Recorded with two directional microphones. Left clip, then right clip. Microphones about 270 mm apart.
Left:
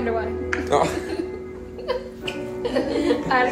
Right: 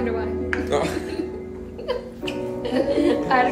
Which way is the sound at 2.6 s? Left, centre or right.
Centre.